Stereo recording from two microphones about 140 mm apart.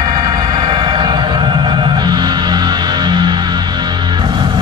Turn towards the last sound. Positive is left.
turn(degrees=-30)  # may be behind; listen again after turning